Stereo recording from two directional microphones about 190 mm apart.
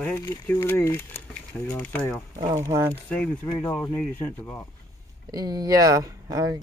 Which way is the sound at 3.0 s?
5° left (ahead or behind).